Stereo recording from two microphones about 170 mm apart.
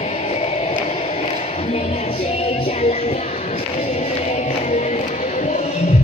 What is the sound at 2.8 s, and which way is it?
Music, 40° left (ahead or behind).